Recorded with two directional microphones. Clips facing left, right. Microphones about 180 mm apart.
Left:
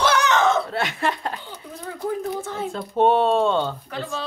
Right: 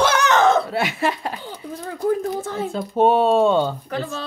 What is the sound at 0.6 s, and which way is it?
Speech, 5° right (ahead or behind).